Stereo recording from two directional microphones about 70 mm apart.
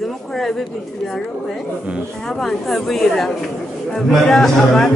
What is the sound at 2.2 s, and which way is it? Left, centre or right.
A man's voice, centre.